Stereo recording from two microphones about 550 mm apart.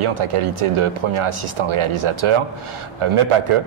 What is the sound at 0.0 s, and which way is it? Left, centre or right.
A man's voice, right.